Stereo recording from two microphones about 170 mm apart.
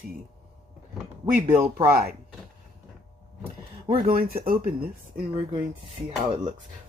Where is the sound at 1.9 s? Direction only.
60° right (ahead or behind).